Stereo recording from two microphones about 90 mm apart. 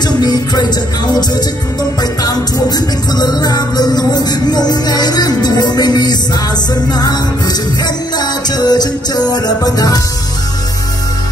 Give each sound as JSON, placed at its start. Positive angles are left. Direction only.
{"t": 0.0, "sound": "music", "side_deg": 50}
{"t": 2.0, "sound": "music", "side_deg": 45}